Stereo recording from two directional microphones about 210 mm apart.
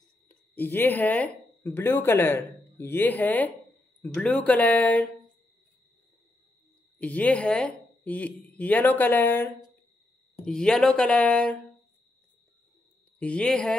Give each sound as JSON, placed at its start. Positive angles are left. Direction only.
{"t": 0.3, "sound": "speech", "side_deg": 10}
{"t": 7.0, "sound": "speech", "side_deg": 5}
{"t": 13.2, "sound": "speech", "side_deg": 5}